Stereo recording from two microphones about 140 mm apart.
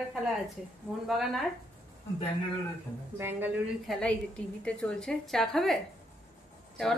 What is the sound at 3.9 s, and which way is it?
A woman's voice, centre (ahead or behind).